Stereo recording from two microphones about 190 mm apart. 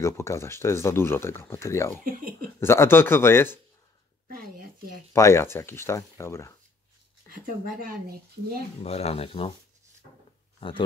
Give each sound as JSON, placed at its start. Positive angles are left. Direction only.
{"t": 0.0, "sound": "speech", "side_deg": 15}
{"t": 4.3, "sound": "a sound", "side_deg": -50}
{"t": 5.1, "sound": "speech", "side_deg": 15}
{"t": 7.2, "sound": "speech", "side_deg": -50}
{"t": 8.8, "sound": "speech", "side_deg": 30}
{"t": 10.6, "sound": "speech", "side_deg": 30}